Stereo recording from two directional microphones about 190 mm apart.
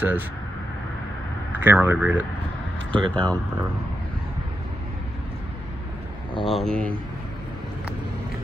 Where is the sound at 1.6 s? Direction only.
10° right (ahead or behind).